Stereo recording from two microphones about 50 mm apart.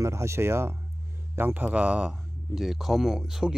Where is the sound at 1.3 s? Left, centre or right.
Right.